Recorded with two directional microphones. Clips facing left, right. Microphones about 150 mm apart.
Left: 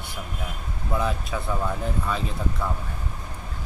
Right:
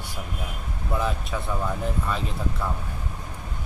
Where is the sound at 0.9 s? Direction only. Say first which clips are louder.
Left 1 dB; centre (ahead or behind).